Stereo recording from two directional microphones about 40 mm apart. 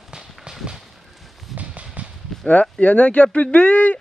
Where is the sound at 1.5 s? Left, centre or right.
Right.